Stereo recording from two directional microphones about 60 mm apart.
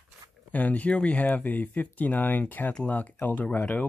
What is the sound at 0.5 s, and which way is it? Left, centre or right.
Speech, left.